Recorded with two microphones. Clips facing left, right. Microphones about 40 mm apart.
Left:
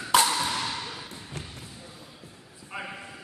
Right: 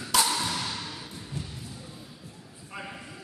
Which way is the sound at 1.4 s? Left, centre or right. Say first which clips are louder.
Right 2 dB; left.